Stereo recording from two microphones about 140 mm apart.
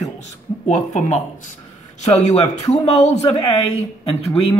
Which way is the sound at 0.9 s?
60° left (ahead or behind).